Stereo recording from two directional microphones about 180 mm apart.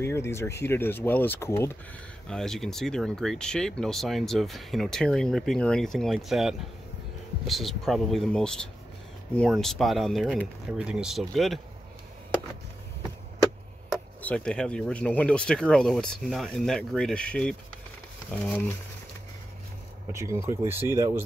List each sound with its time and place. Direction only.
0.0 s speech: 15° left (ahead or behind)
2.2 s speech: 5° left (ahead or behind)
13.8 s speech: 5° left (ahead or behind)
20.1 s speech: 15° right (ahead or behind)